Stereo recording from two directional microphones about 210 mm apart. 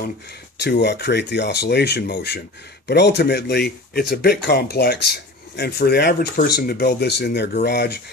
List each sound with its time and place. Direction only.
0.6 s speech: 55° left (ahead or behind)